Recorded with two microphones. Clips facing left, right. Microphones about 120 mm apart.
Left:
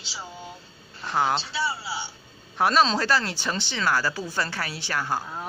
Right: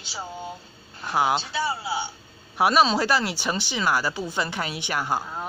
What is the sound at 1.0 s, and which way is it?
Speech, 10° right (ahead or behind).